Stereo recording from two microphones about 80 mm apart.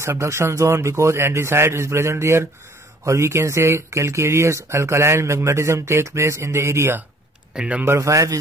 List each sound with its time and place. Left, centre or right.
0.0 s speech: right
7.5 s speech: centre
7.8 s speech: right